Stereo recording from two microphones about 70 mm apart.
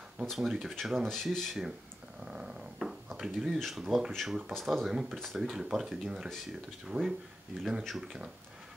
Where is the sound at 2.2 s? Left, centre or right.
Centre.